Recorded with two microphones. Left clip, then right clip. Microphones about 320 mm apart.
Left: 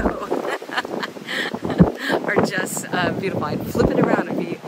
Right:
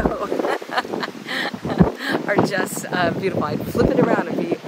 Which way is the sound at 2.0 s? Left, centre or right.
Centre.